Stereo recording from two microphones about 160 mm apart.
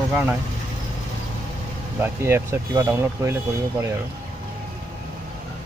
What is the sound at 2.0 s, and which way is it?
Speech, 15° right (ahead or behind).